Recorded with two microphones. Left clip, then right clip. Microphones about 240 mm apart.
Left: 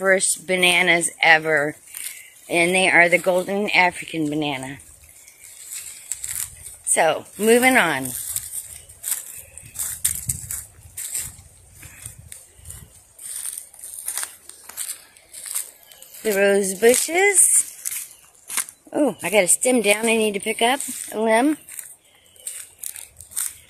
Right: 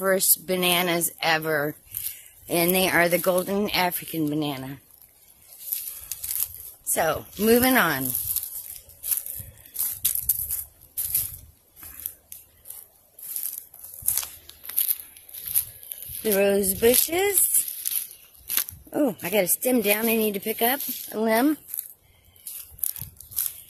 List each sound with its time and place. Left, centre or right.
0.1 s a woman's voice: centre
2.0 s a sound: centre
3.3 s a woman's voice: centre
7.0 s a woman's voice: centre
16.3 s a woman's voice: centre
18.5 s speech: centre